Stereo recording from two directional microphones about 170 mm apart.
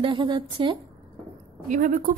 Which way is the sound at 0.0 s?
30° right (ahead or behind).